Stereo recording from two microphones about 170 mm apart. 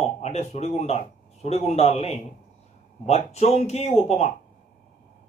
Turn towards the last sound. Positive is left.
turn(degrees=40)  # may be behind; listen again after turning